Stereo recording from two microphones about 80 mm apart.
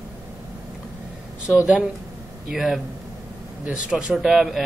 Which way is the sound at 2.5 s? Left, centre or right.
Centre.